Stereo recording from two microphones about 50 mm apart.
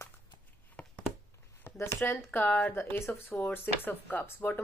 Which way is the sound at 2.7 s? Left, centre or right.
Left.